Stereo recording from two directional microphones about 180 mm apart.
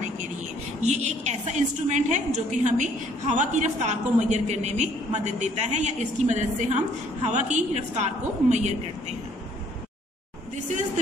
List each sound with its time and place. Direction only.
0.8 s a woman's voice: 40° right (ahead or behind)